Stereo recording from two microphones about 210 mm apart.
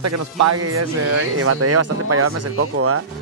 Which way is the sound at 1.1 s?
90° right.